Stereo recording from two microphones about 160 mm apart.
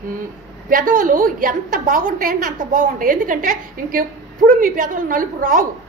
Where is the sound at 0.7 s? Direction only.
60° right (ahead or behind).